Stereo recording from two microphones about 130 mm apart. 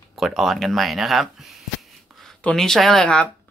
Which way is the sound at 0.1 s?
Centre (ahead or behind).